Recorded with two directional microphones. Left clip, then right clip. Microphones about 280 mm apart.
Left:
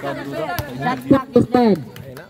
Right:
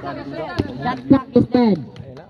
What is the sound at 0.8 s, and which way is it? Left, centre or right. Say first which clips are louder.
Speech: left 1 dB; right.